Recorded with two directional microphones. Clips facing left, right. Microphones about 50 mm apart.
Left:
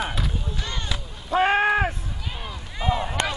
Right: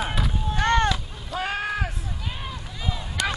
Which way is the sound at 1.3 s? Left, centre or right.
Left.